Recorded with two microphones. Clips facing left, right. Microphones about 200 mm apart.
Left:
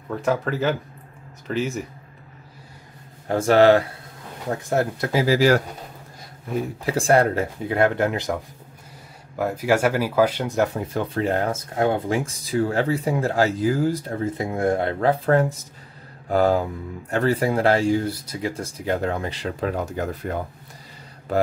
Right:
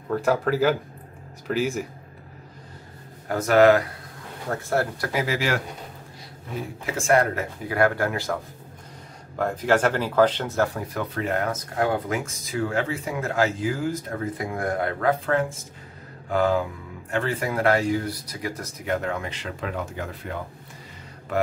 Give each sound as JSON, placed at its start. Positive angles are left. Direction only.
{"t": 0.1, "sound": "speech", "side_deg": 0}
{"t": 3.3, "sound": "speech", "side_deg": 30}
{"t": 4.5, "sound": "speech", "side_deg": 20}
{"t": 6.9, "sound": "speech", "side_deg": 35}
{"t": 9.4, "sound": "speech", "side_deg": 10}